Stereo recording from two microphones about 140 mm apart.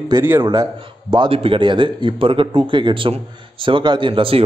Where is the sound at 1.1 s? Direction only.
40° right (ahead or behind).